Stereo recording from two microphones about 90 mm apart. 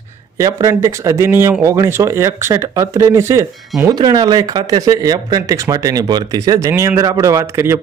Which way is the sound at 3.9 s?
45° right (ahead or behind).